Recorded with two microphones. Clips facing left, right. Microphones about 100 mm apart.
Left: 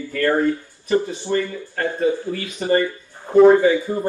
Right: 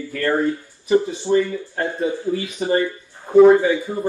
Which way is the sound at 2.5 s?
5° right (ahead or behind).